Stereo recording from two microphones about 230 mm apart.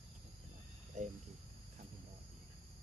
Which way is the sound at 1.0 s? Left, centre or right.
Right.